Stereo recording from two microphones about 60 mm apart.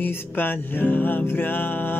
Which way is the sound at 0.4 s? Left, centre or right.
Left.